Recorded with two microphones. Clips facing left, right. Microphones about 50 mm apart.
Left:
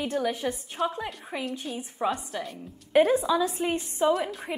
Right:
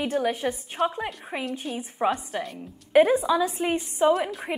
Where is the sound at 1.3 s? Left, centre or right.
Right.